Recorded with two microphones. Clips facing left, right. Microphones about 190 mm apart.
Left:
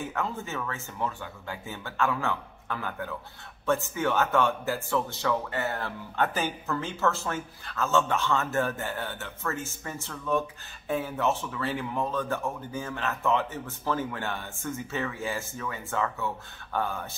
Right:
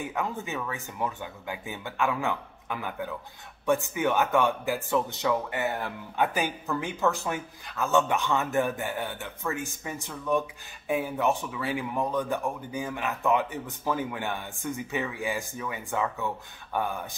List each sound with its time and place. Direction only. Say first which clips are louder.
0.0 s speech: right 1 dB; 15° right (ahead or behind)